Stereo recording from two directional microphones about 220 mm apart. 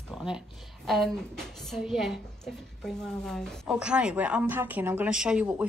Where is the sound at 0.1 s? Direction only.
Centre (ahead or behind).